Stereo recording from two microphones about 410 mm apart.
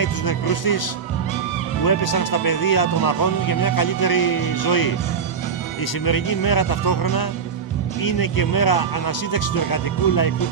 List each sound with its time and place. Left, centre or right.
0.0 s speech: left
1.9 s speech: left
6.0 s speech: left